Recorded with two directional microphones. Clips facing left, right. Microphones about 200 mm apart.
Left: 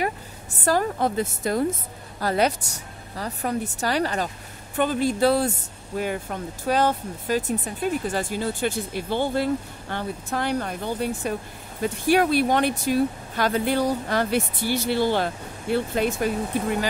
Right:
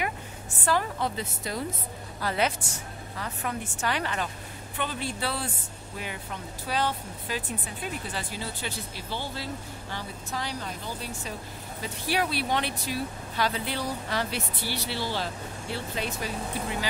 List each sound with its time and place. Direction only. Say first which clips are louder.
0.7 s a woman's voice: left 5 dB; 45° left (ahead or behind)